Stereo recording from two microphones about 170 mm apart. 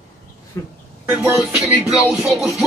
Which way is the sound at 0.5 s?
20° left (ahead or behind).